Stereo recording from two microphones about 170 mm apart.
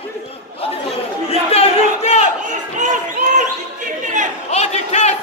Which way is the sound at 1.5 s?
35° left (ahead or behind).